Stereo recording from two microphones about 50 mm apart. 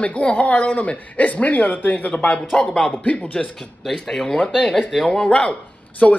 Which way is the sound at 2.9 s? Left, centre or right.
Left.